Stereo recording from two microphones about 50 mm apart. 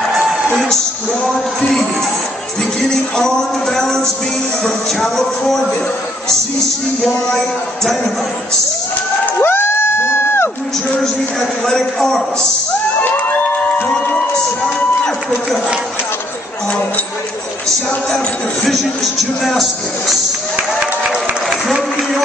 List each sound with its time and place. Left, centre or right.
0.2 s music: centre
1.2 s a man's voice: centre
9.4 s crowd: left
11.6 s a man's voice: centre
13.8 s crowd: centre
17.6 s a sound: centre
21.5 s a sound: centre